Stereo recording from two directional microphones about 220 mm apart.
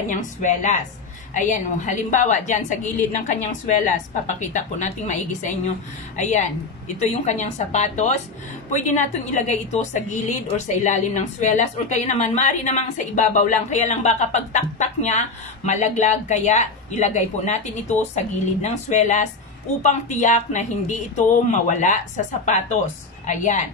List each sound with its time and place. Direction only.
0.1 s a woman's voice: 35° left (ahead or behind)